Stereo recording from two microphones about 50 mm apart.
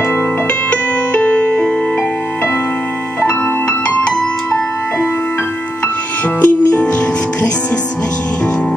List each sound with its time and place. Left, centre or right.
0.7 s music: left
3.3 s music: left
6.4 s music: left